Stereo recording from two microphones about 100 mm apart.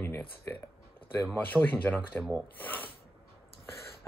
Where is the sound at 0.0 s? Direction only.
20° left (ahead or behind).